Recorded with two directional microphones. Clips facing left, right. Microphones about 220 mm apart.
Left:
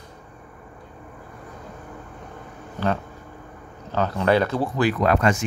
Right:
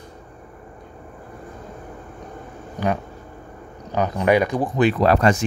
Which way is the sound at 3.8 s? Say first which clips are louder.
Right 2 dB; 15° right (ahead or behind).